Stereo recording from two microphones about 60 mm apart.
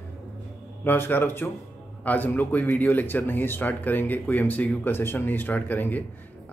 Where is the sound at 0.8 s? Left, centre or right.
Left.